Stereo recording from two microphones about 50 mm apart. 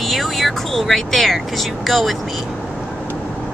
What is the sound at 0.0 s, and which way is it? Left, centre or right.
Speech, centre.